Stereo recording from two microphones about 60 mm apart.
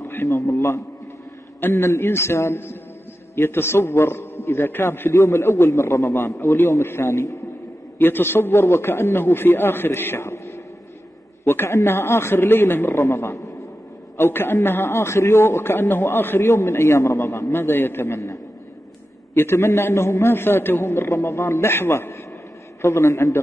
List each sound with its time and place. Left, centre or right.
0.1 s a man's voice: left
8.0 s a man's voice: left